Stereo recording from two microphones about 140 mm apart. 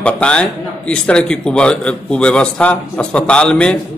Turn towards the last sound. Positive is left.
turn(degrees=5)  # may be behind; listen again after turning